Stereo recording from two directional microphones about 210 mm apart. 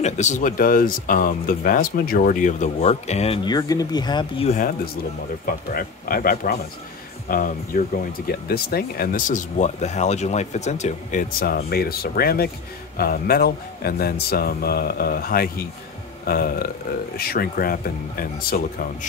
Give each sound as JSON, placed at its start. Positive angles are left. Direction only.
{"t": 0.0, "sound": "speech", "side_deg": 35}
{"t": 5.4, "sound": "speech", "side_deg": 45}